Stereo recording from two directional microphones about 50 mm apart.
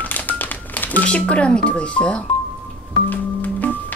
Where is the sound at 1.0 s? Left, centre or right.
Left.